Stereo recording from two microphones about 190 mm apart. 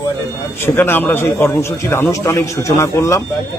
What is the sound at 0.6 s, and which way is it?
A man's voice, 10° left (ahead or behind).